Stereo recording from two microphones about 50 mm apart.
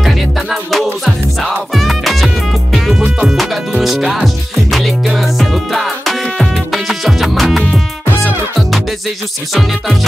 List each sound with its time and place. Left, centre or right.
0.0 s music: centre